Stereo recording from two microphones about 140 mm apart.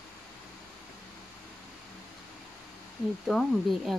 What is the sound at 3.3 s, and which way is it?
Speech, centre (ahead or behind).